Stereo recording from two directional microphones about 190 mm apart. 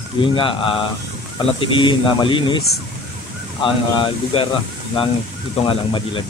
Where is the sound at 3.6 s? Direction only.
25° left (ahead or behind).